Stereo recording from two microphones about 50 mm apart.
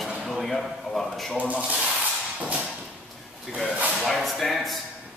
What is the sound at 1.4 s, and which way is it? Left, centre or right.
Speech, right.